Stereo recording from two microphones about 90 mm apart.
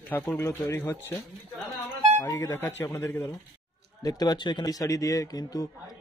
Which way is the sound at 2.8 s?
30° left (ahead or behind).